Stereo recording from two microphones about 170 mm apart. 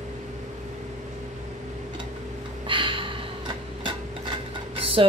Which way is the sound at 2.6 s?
30° right (ahead or behind).